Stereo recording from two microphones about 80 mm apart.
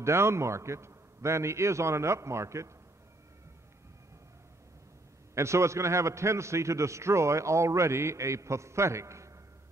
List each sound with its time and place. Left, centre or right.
0.0 s a man's voice: right
5.3 s a man's voice: right